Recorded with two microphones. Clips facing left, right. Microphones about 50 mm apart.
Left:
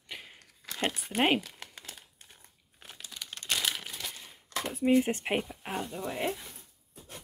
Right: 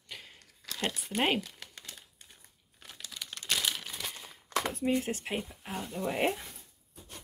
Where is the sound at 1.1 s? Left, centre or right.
Centre.